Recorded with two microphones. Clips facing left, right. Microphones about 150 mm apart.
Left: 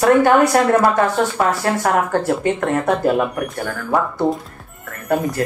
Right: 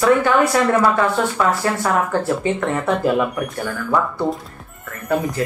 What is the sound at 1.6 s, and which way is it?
Speech, 55° left (ahead or behind).